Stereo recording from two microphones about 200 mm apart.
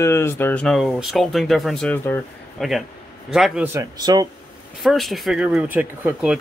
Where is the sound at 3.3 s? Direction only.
5° right (ahead or behind); by 4.2 s 20° right (ahead or behind).